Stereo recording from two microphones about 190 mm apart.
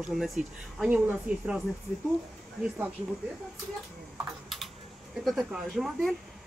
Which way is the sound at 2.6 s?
10° right (ahead or behind).